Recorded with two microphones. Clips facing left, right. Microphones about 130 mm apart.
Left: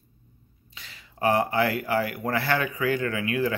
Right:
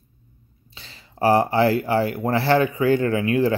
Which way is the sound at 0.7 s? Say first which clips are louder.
Right 2 dB; 30° right (ahead or behind).